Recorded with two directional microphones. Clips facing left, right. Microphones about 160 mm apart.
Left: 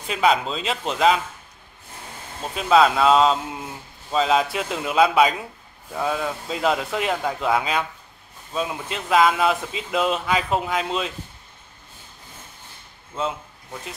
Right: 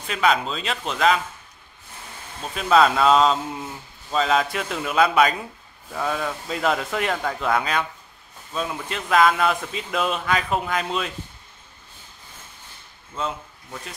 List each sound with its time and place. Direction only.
0.1 s speech: 20° left (ahead or behind)
0.9 s a man's voice: 10° left (ahead or behind)
2.5 s a man's voice: centre (ahead or behind)